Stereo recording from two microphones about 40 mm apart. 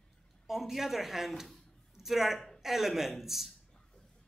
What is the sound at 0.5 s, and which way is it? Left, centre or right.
A woman's voice, centre.